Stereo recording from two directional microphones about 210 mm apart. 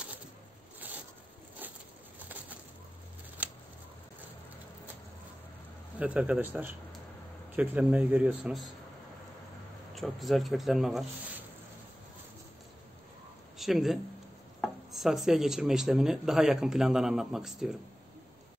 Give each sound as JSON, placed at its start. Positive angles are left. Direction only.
{"t": 1.6, "sound": "a sound", "side_deg": -10}
{"t": 3.4, "sound": "scissors", "side_deg": -10}
{"t": 5.9, "sound": "speech", "side_deg": -5}
{"t": 9.9, "sound": "speech", "side_deg": 0}
{"t": 13.6, "sound": "speech", "side_deg": 0}